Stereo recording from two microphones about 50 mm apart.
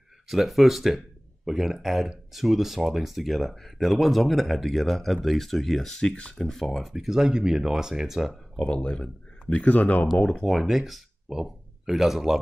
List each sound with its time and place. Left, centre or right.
0.3 s speech: centre
8.5 s speech: centre
10.4 s speech: centre